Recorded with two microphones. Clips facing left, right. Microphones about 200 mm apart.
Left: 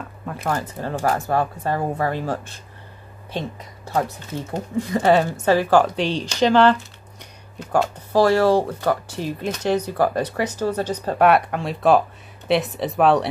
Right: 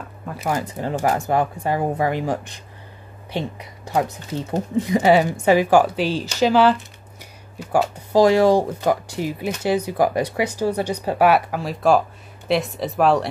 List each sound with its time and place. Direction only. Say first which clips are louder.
0.3 s speech: right 1 dB; 10° right (ahead or behind)
4.7 s speech: right 1 dB; 15° right (ahead or behind); by 13.3 s centre (ahead or behind)